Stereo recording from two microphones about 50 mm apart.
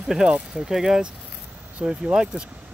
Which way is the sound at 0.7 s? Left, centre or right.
Centre.